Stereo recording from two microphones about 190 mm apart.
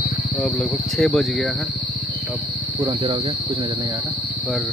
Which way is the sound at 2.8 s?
30° right (ahead or behind).